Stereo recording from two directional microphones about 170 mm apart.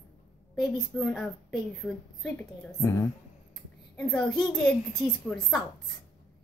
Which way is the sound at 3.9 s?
5° left (ahead or behind).